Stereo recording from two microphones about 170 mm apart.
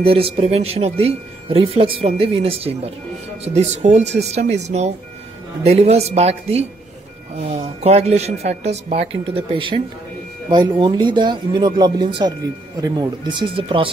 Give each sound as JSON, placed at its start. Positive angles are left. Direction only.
{"t": 0.0, "sound": "speech", "side_deg": -35}